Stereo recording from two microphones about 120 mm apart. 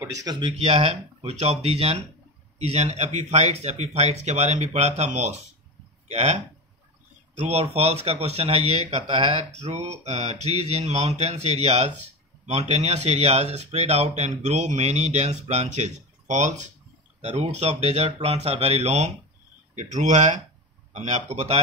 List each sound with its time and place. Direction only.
0.0 s speech: 30° right (ahead or behind)
0.5 s mantra: 55° right (ahead or behind)
2.6 s speech: 65° right (ahead or behind)
7.3 s mantra: 60° right (ahead or behind)
12.4 s speech: 65° right (ahead or behind); by 16.7 s 85° right
17.2 s mantra: 70° right (ahead or behind)
19.7 s speech: 80° right
20.9 s speech: 70° right (ahead or behind)